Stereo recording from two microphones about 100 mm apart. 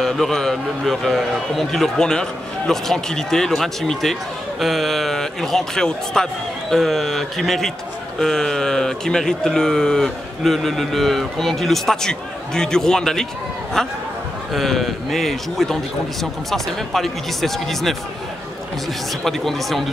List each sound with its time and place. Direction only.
0.0 s a man's voice: 5° left (ahead or behind)
19.2 s a man's voice: centre (ahead or behind)